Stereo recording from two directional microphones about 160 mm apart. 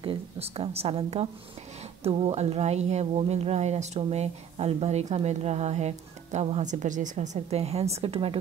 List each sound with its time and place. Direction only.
0.0 s a woman's voice: 35° right (ahead or behind)